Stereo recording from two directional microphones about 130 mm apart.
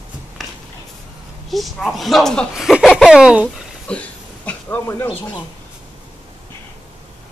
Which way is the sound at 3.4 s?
5° left (ahead or behind).